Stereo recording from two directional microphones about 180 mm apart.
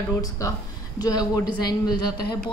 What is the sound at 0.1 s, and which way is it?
Speech, 20° left (ahead or behind).